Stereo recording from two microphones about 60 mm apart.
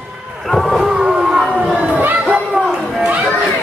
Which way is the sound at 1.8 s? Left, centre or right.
Right.